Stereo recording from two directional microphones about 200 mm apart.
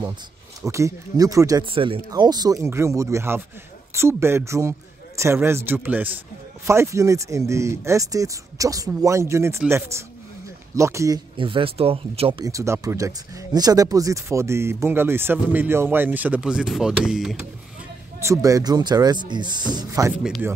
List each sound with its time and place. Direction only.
0.6 s speech: 15° right (ahead or behind)
11.3 s speech: 25° right (ahead or behind); by 17.4 s 5° right (ahead or behind)
18.2 s a man's voice: 15° right (ahead or behind)